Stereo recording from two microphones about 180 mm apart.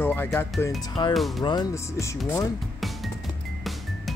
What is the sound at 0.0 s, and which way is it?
Speech, 10° left (ahead or behind).